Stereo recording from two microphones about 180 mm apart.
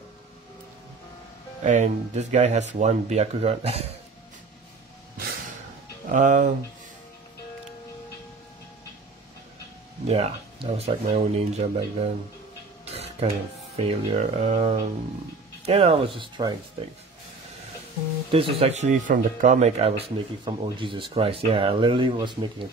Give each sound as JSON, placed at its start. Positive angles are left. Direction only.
{"t": 1.6, "sound": "speech", "side_deg": -40}
{"t": 6.1, "sound": "speech", "side_deg": -45}
{"t": 10.0, "sound": "speech", "side_deg": -35}
{"t": 12.8, "sound": "a sound", "side_deg": -35}
{"t": 13.7, "sound": "speech", "side_deg": -35}
{"t": 18.3, "sound": "speech", "side_deg": -35}